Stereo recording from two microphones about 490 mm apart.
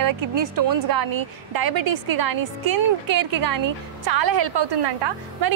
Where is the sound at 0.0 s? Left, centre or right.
Right.